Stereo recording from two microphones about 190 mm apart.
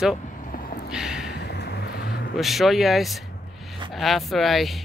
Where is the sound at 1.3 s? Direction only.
60° left (ahead or behind).